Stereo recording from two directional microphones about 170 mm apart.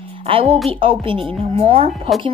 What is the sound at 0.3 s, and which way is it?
A child's voice, 35° right (ahead or behind).